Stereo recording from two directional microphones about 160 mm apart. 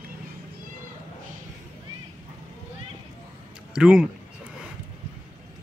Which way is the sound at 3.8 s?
5° right (ahead or behind).